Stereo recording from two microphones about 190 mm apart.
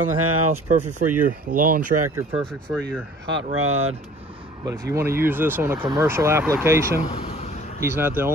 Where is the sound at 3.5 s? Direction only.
90° right.